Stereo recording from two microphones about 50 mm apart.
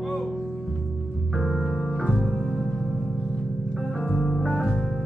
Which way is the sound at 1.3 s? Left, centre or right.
Centre.